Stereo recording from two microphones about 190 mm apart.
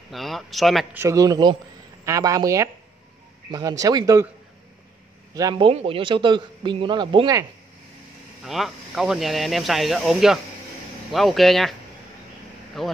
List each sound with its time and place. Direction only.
0.1 s speech: centre (ahead or behind)
0.9 s a man's voice: 15° right (ahead or behind)
5.3 s a man's voice: 20° right (ahead or behind)
8.5 s speech: centre (ahead or behind)
12.8 s speech: centre (ahead or behind)